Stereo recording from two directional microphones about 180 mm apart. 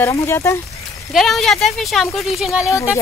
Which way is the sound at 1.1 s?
Centre (ahead or behind).